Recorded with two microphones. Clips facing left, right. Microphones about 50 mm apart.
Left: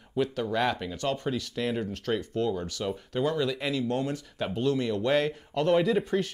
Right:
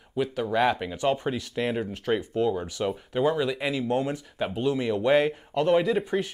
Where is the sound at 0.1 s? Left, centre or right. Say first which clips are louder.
Right 2 dB; centre.